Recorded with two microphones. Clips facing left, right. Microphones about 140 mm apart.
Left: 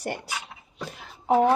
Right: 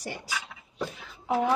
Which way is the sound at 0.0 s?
60° left (ahead or behind).